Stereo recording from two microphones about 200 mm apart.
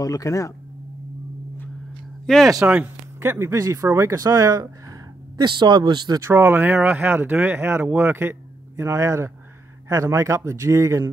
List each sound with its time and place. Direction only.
0.0 s speech: 15° left (ahead or behind)
2.2 s speech: centre (ahead or behind)
2.5 s speech: 10° right (ahead or behind)